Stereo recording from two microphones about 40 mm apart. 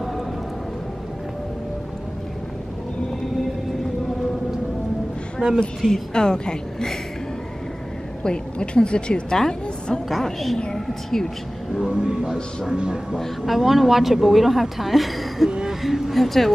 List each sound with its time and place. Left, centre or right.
5.4 s speech: right
5.8 s a woman's voice: centre
6.1 s a woman's voice: centre
8.2 s speech: left
10.0 s a woman's voice: centre
11.7 s speech: centre
13.5 s a woman's voice: centre
15.4 s a sound: centre
15.8 s speech: centre
16.2 s a woman's voice: centre